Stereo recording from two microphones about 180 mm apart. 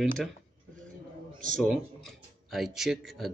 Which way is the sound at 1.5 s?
Centre (ahead or behind).